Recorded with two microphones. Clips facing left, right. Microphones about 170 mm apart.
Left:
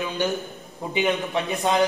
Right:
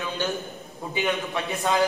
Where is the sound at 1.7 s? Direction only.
20° left (ahead or behind).